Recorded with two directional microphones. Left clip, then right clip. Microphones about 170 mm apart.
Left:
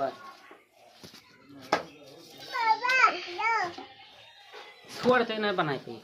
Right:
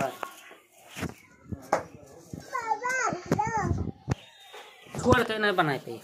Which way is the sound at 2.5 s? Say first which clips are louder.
Left 4 dB; 35° right (ahead or behind).